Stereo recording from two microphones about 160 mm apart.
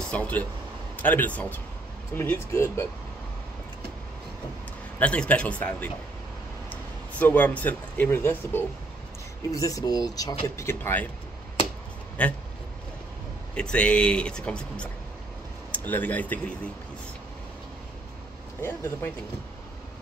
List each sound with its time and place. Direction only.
0.1 s speech: 10° left (ahead or behind)
4.9 s speech: 10° left (ahead or behind)
12.2 s speech: 10° left (ahead or behind)
13.6 s speech: 5° left (ahead or behind)
18.6 s speech: 15° left (ahead or behind)